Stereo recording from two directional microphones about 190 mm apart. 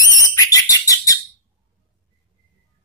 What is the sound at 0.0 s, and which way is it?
Bird, 20° left (ahead or behind).